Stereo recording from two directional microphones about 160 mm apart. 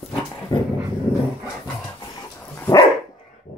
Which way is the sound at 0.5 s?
20° left (ahead or behind).